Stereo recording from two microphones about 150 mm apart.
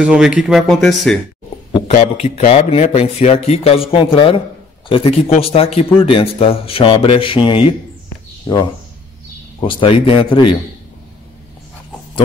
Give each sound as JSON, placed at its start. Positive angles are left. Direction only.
{"t": 0.0, "sound": "speech", "side_deg": -5}
{"t": 1.9, "sound": "speech", "side_deg": 50}